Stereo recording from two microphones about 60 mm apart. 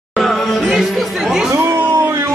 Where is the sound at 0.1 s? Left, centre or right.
Centre.